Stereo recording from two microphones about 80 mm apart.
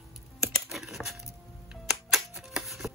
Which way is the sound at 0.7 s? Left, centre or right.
Centre.